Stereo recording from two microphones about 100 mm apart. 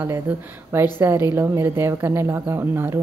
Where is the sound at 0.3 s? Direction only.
15° right (ahead or behind).